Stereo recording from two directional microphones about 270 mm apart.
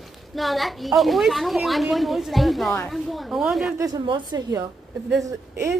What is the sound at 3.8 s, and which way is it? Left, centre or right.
A woman's voice, centre.